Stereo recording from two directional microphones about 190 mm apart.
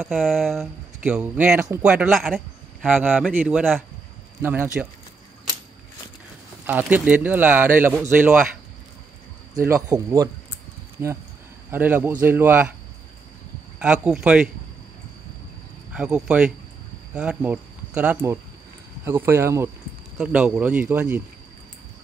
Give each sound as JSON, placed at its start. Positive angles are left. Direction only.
{"t": 0.1, "sound": "speech", "side_deg": 0}
{"t": 6.6, "sound": "speech", "side_deg": -10}
{"t": 9.5, "sound": "speech", "side_deg": -15}
{"t": 13.7, "sound": "speech", "side_deg": -5}
{"t": 15.9, "sound": "speech", "side_deg": -5}